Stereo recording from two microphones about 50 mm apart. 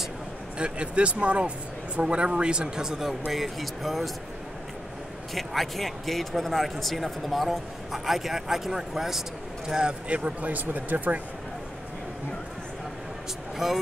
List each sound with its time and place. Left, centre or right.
0.6 s speech: right
3.1 s a man's voice: centre
5.3 s a man's voice: centre; by 11.1 s right
13.6 s a man's voice: centre